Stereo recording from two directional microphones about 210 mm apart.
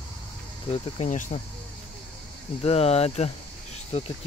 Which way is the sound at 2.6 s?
30° left (ahead or behind).